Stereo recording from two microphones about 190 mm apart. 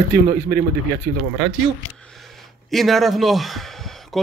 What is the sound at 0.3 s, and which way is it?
Speech, 45° right (ahead or behind).